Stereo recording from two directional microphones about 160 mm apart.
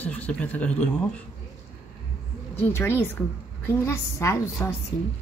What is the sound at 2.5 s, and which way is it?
Speech, 15° left (ahead or behind).